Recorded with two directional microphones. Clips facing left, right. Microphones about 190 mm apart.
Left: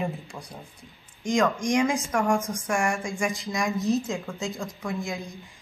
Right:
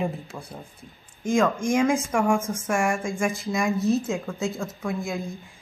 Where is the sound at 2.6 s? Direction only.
Centre (ahead or behind).